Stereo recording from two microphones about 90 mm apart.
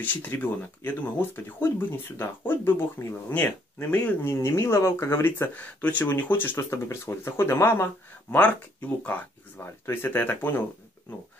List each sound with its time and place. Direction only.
0.0 s speech: 20° left (ahead or behind)